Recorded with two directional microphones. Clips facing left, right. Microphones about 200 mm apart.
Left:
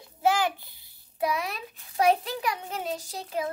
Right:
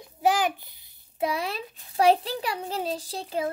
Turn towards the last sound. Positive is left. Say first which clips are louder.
# right 2 dB
turn(degrees=-30)  # may be behind; listen again after turning